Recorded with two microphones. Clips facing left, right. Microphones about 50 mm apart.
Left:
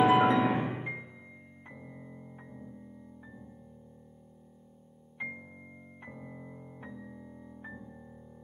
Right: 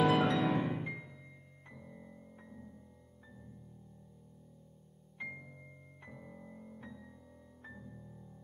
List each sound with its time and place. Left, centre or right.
0.0 s music: left
5.2 s music: centre